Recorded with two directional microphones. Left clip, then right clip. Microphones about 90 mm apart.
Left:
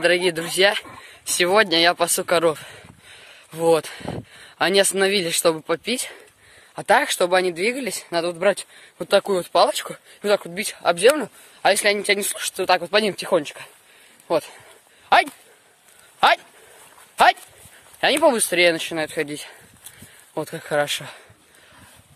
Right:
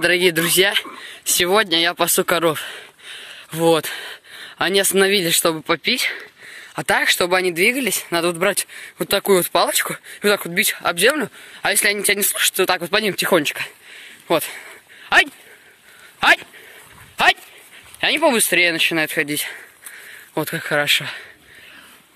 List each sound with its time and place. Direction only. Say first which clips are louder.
0.0 s speech: right 3 dB; 5° right (ahead or behind); by 6.2 s 15° left (ahead or behind)
6.7 s speech: right 1 dB; 5° left (ahead or behind); by 8.1 s 20° left (ahead or behind)
8.1 s speech: even; 5° left (ahead or behind)
10.6 s speech: right 1 dB; 15° left (ahead or behind)
13.3 s speech: right 4 dB; 25° right (ahead or behind)
14.3 s speech: right 3 dB; 5° left (ahead or behind)
16.2 s a man's voice: right 2 dB; 35° left (ahead or behind)
18.0 s speech: right 1 dB; 60° left (ahead or behind)
18.5 s speech: right 2 dB; 45° left (ahead or behind)
18.9 s speech: right 5 dB; 20° left (ahead or behind)
20.7 s speech: right 4 dB; 35° left (ahead or behind)